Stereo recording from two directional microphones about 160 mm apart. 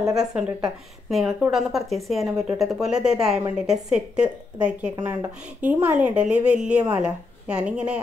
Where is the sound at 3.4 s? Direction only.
15° right (ahead or behind).